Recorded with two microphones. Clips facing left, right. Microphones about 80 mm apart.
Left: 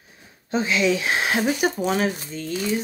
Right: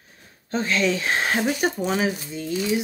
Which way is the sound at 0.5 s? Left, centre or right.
Centre.